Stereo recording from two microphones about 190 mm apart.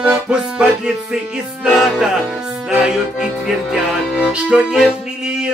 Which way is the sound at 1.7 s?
Centre (ahead or behind).